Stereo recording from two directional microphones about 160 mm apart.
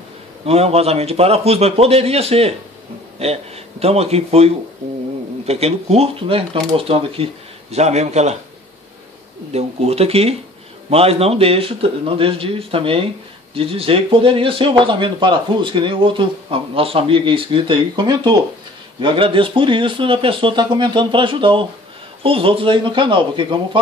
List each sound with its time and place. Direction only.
0.5 s speech: 40° right (ahead or behind)
5.5 s a man's voice: 40° right (ahead or behind)
9.5 s speech: 40° right (ahead or behind)